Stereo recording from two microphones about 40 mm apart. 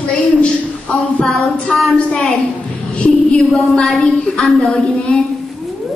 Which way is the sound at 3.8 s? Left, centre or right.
Centre.